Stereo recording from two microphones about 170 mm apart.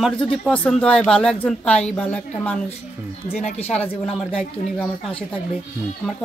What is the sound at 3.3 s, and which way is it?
Speech, 40° left (ahead or behind).